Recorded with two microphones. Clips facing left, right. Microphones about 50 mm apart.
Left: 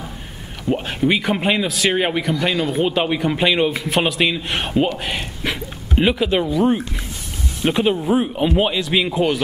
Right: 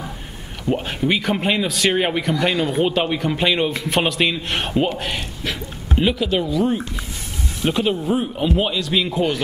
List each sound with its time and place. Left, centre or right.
0.7 s a man's voice: centre